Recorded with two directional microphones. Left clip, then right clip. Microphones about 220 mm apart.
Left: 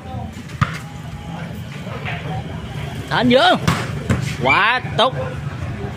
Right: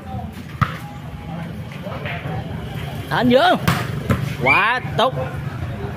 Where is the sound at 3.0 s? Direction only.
5° left (ahead or behind).